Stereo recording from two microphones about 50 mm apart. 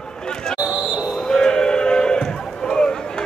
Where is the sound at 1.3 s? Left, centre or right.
Centre.